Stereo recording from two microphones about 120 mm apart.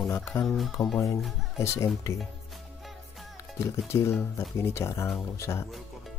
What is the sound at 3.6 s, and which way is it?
Speech, 20° left (ahead or behind).